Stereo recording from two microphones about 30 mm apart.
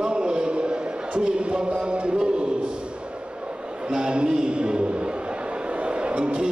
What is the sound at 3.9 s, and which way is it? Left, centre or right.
Speech, right.